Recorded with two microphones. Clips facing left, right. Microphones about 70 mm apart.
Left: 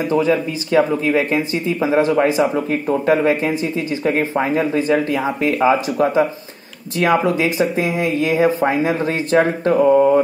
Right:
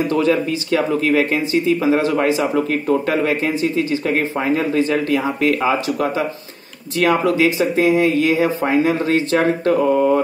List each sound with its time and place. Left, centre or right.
0.1 s speech: centre